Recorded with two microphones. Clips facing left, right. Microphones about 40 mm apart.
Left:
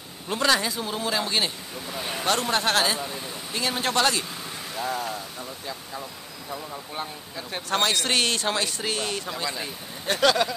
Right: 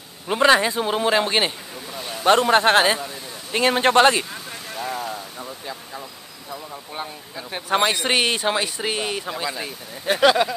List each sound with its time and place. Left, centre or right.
0.3 s a man's voice: right
4.7 s a man's voice: centre